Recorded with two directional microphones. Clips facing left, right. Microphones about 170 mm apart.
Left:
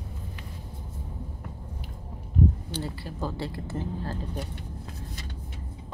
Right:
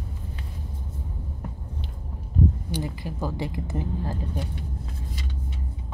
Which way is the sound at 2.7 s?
15° right (ahead or behind).